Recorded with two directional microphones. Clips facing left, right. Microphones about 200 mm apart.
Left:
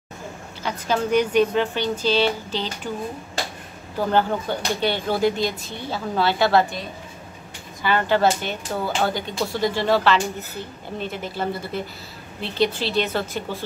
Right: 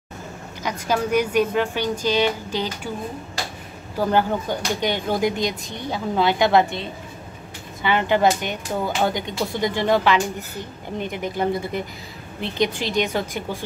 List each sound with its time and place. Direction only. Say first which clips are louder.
0.6 s speech: right 1 dB; 10° right (ahead or behind)
3.9 s speech: right 1 dB; 10° right (ahead or behind)